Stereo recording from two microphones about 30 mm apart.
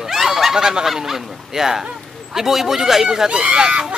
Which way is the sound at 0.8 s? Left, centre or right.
Centre.